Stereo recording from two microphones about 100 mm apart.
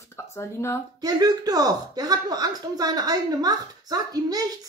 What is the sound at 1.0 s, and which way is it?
Speech, 40° right (ahead or behind).